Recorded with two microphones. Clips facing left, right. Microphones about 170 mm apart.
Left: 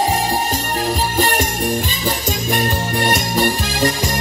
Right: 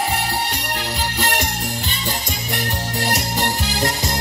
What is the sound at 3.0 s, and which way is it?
Music, 65° left (ahead or behind).